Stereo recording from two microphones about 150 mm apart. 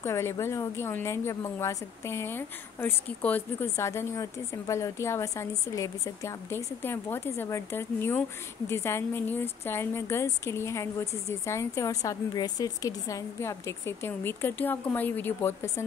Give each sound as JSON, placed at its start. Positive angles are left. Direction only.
{"t": 0.0, "sound": "a woman's voice", "side_deg": 20}